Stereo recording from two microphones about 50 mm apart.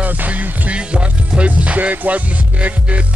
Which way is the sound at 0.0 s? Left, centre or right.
Right.